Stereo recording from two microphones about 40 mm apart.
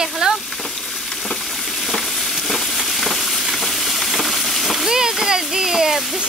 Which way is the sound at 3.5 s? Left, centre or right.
Centre.